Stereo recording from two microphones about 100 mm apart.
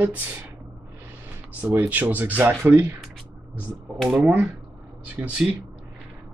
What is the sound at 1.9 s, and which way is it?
Speech, 15° right (ahead or behind).